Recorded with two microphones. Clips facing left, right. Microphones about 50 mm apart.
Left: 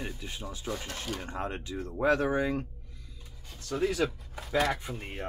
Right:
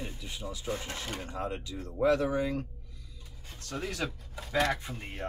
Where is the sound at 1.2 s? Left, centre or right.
Left.